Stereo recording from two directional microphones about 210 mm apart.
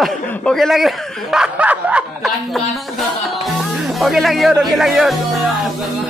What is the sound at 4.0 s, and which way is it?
A man's voice, centre (ahead or behind).